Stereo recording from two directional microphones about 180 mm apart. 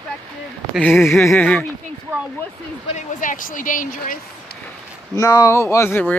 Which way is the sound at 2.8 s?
45° left (ahead or behind).